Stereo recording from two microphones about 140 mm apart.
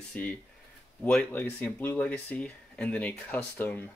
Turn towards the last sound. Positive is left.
turn(degrees=15)  # may be behind; listen again after turning